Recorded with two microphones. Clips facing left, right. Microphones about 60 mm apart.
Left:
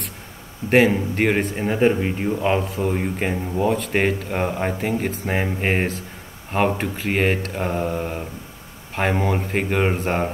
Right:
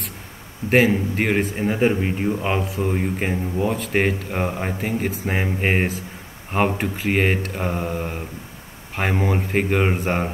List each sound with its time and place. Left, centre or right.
0.7 s a man's voice: centre